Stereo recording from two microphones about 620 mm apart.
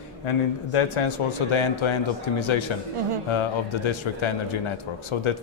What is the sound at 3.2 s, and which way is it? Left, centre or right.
A man's voice, left.